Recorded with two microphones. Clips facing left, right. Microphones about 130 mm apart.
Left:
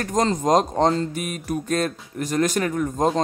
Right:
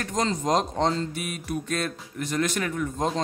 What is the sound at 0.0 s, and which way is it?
Speech, 45° left (ahead or behind).